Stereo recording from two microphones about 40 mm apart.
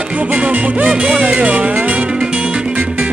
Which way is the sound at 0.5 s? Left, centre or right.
Right.